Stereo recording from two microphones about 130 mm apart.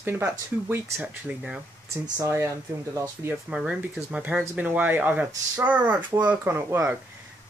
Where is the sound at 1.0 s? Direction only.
10° right (ahead or behind).